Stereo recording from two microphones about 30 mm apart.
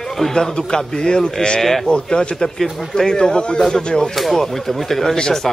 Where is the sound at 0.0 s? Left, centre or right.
Centre.